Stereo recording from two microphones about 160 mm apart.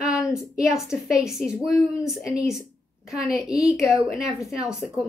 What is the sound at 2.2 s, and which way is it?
Speech, 20° left (ahead or behind).